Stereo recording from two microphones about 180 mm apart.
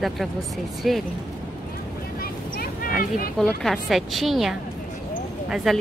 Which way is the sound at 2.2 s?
55° left (ahead or behind).